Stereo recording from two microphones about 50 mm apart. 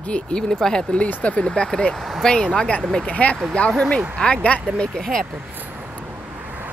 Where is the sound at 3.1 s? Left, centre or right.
Left.